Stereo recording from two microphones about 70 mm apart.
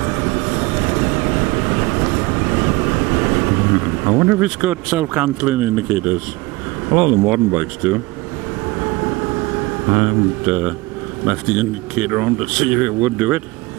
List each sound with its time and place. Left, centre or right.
0.0 s vehicle: right
7.0 s speech: right
9.8 s speech: right